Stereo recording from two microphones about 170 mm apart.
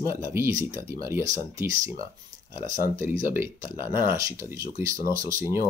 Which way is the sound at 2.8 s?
15° right (ahead or behind).